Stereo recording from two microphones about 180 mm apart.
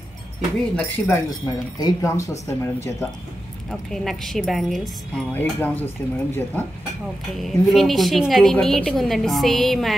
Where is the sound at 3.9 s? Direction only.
Centre (ahead or behind).